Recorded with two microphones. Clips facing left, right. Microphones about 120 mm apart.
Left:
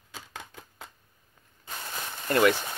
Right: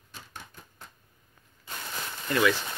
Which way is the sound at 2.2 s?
45° left (ahead or behind).